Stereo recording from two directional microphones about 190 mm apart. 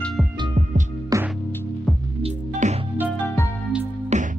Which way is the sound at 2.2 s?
35° right (ahead or behind).